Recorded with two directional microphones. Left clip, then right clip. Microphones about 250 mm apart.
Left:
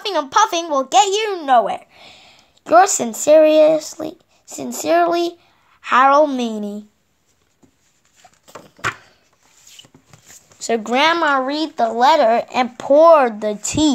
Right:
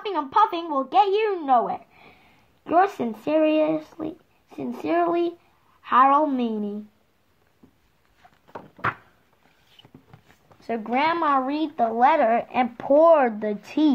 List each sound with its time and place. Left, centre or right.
0.0 s a child's voice: left
10.6 s a child's voice: left; by 13.9 s centre